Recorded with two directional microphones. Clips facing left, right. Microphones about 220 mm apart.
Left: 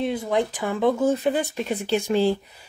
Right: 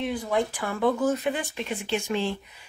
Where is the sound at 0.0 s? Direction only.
20° left (ahead or behind).